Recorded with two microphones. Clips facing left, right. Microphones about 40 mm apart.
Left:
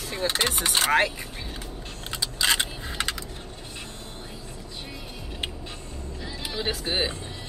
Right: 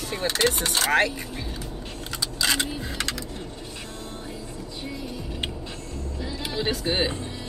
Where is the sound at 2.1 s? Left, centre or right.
Left.